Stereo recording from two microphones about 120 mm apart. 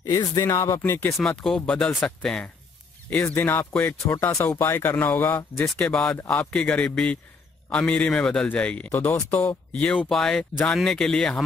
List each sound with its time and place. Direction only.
0.0 s speech: 30° left (ahead or behind)
1.1 s speech: 5° left (ahead or behind)
5.7 s speech: 5° left (ahead or behind)
8.9 s speech: 20° left (ahead or behind); by 11.4 s 5° left (ahead or behind)